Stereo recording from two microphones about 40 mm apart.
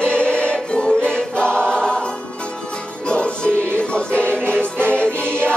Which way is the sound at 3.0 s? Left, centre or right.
Left.